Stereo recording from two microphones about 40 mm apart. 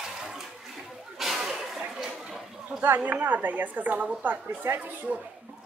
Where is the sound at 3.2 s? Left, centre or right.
Right.